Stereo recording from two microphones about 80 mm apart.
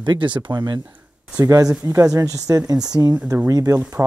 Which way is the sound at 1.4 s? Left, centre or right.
Right.